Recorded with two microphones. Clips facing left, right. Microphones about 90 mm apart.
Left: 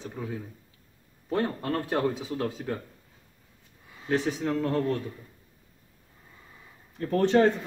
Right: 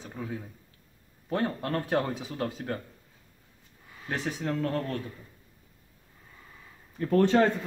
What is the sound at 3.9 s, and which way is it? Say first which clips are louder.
Speech: left 6 dB; 20° left (ahead or behind).